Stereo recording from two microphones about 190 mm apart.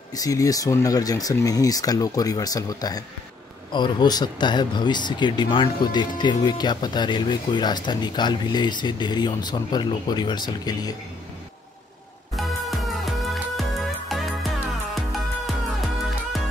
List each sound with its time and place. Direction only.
0.1 s speech: 20° left (ahead or behind)
12.4 s music: centre (ahead or behind)